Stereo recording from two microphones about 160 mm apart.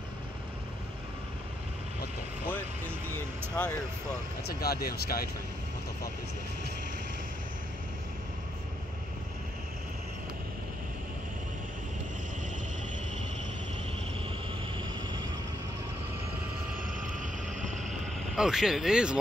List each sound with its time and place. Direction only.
3.1 s vehicle: 10° left (ahead or behind)
4.5 s speech: 80° left
17.6 s vehicle: 50° right (ahead or behind)
18.3 s speech: 5° right (ahead or behind)